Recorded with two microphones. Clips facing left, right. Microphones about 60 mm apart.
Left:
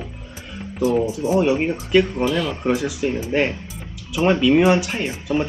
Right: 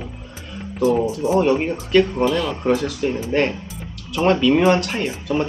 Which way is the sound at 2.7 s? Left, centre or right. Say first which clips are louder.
Even; centre.